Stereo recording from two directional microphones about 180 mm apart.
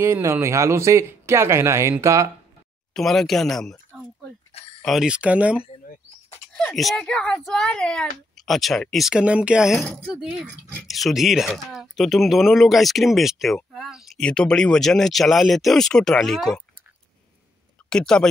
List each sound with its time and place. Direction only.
0.0 s speech: 15° right (ahead or behind)
2.9 s speech: centre (ahead or behind)
4.5 s a sound: 35° left (ahead or behind)
4.8 s speech: 5° right (ahead or behind)
17.8 s speech: 5° left (ahead or behind)